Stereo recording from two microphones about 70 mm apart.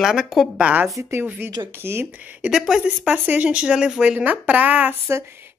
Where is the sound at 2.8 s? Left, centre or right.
Centre.